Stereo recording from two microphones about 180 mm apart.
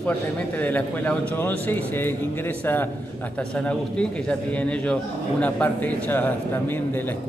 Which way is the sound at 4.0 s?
5° left (ahead or behind).